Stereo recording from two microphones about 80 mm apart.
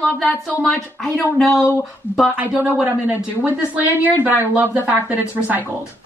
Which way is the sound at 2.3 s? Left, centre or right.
Right.